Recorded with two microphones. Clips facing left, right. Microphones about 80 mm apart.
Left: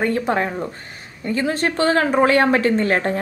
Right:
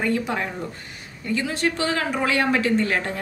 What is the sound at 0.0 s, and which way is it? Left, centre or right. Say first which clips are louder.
Speech: left 4 dB; left.